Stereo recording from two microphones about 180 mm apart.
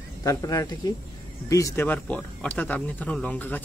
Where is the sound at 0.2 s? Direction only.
20° left (ahead or behind).